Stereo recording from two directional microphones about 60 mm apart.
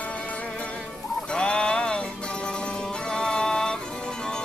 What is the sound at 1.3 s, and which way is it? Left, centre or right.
Music, centre.